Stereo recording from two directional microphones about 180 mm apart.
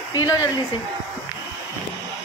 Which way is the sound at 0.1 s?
20° left (ahead or behind).